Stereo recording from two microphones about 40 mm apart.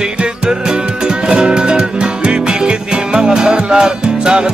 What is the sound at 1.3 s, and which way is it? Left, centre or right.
Music, right.